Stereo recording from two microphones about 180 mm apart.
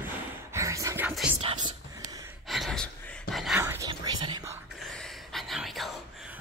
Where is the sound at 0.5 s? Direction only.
15° right (ahead or behind).